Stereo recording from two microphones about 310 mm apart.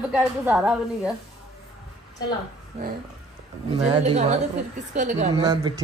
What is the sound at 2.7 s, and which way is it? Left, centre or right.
Speech, centre.